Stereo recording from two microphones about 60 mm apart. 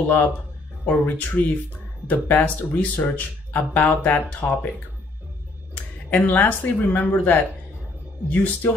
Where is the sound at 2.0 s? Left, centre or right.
Left.